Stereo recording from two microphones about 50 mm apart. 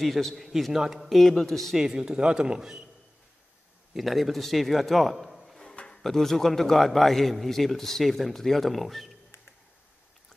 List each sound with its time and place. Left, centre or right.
0.0 s a man's voice: centre
1.8 s a man's voice: centre
3.9 s a man's voice: centre
5.6 s a sound: centre
6.0 s a man's voice: centre